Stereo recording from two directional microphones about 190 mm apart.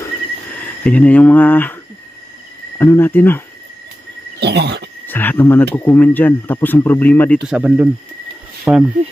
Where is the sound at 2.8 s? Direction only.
10° left (ahead or behind).